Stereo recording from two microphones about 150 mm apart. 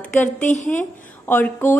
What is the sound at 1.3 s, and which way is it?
Speech, 15° left (ahead or behind).